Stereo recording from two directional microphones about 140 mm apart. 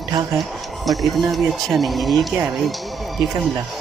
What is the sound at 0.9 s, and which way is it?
Speech, centre (ahead or behind).